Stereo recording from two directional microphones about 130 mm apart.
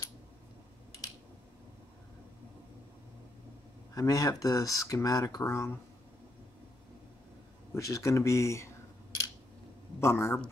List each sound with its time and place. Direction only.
3.9 s speech: 25° left (ahead or behind)
7.7 s speech: 25° left (ahead or behind)
9.9 s speech: 20° left (ahead or behind)